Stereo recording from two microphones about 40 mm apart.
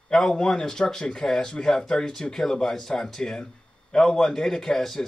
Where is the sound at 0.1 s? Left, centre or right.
Centre.